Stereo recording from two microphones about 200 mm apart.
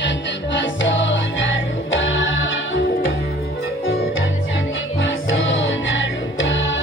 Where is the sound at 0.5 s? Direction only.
65° left (ahead or behind).